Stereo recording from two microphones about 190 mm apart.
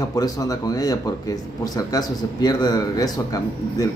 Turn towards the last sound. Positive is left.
turn(degrees=20)  # may be behind; listen again after turning